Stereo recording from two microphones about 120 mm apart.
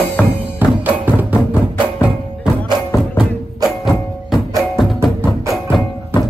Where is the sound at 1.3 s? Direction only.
20° left (ahead or behind).